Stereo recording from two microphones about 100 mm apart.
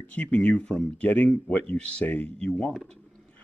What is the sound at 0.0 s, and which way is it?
Speech, 15° left (ahead or behind).